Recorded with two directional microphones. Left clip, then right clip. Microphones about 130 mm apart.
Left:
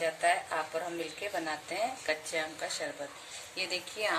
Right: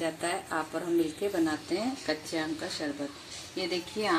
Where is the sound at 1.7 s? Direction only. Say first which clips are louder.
Right 1 dB; 40° right (ahead or behind).